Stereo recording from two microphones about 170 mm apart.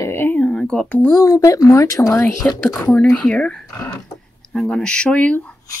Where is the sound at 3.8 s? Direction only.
20° left (ahead or behind).